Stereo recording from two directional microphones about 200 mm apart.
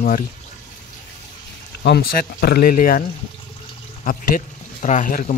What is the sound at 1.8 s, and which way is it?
Speech, 50° left (ahead or behind).